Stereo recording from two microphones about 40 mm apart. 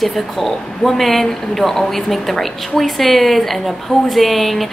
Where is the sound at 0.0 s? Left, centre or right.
Centre.